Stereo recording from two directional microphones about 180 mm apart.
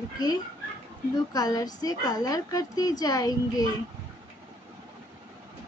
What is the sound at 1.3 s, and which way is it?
A woman's voice, 20° left (ahead or behind).